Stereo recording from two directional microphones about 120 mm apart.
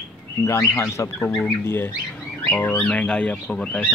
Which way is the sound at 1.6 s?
20° left (ahead or behind).